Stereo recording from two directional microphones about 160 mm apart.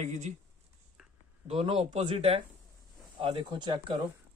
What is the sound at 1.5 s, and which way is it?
Speech, 35° right (ahead or behind).